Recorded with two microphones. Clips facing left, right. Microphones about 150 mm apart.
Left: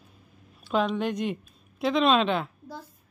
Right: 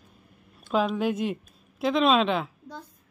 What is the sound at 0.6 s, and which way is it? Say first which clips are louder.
A woman's voice: right 1 dB; 5° right (ahead or behind).